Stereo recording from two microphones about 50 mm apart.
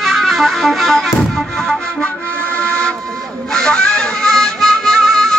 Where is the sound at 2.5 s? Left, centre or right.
Left.